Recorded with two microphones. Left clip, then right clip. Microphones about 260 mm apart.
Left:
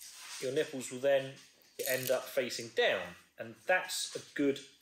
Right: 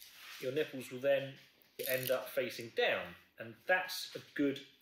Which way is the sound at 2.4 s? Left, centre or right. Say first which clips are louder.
Left 3 dB; centre.